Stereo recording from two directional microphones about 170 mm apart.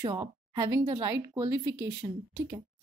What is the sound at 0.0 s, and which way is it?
A woman's voice, 20° right (ahead or behind).